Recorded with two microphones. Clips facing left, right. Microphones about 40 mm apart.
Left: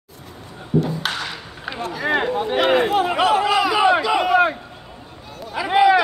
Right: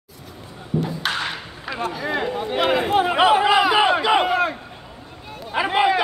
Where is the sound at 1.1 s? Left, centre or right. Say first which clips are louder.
Right 2 dB; right.